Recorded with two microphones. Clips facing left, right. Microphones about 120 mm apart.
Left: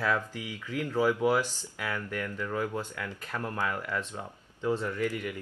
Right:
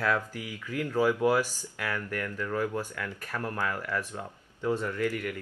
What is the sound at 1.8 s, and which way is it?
Speech, 15° left (ahead or behind).